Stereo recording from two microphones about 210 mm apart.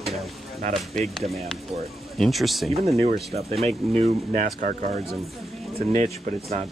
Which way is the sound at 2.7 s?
30° right (ahead or behind).